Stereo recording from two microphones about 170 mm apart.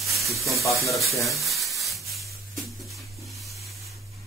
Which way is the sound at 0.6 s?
20° left (ahead or behind).